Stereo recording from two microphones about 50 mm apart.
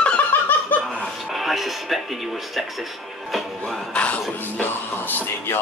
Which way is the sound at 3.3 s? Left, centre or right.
Centre.